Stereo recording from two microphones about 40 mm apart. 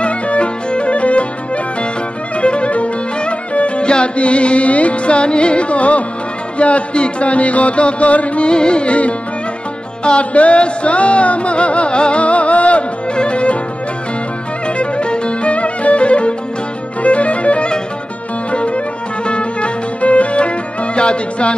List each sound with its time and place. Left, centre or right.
0.0 s music: left
2.4 s music: left
8.5 s music: left
14.8 s music: left